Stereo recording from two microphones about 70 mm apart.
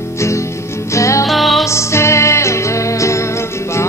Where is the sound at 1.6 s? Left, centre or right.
Left.